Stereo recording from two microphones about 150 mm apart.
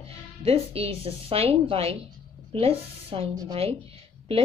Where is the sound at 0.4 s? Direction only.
40° right (ahead or behind).